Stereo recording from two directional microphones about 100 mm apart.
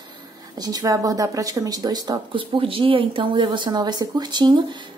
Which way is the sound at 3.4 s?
45° right (ahead or behind).